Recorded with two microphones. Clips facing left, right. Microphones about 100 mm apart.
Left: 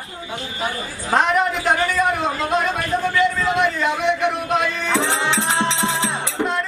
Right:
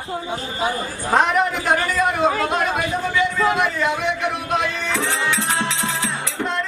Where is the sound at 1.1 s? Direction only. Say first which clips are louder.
Even; centre (ahead or behind).